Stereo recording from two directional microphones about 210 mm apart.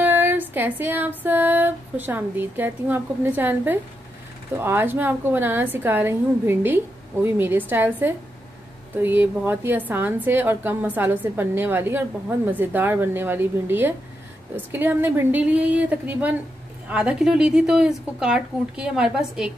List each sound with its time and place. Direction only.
0.0 s music: 10° right (ahead or behind)
16.9 s speech: 5° right (ahead or behind)